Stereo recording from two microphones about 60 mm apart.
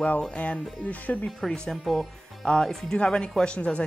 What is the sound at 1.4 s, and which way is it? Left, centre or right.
Speech, centre.